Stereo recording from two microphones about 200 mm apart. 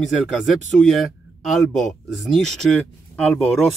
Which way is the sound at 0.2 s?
Centre (ahead or behind).